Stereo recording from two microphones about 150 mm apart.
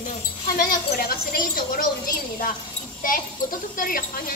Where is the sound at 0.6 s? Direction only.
85° left.